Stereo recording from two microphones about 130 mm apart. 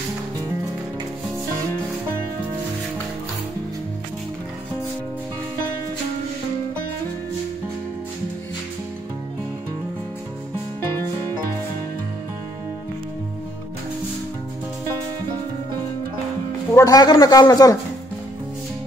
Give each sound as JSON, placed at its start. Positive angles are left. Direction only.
{"t": 16.7, "sound": "a man's voice", "side_deg": 25}